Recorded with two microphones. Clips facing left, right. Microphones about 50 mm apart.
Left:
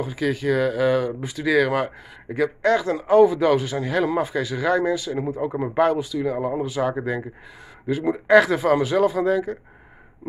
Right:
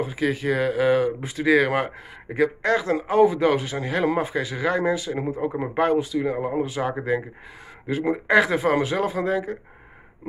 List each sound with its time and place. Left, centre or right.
0.0 s speech: right
8.3 s speech: centre